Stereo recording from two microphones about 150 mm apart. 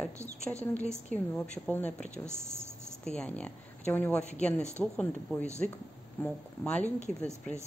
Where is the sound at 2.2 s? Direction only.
15° right (ahead or behind).